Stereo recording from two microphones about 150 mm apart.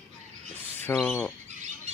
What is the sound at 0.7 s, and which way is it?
Speech, 10° left (ahead or behind).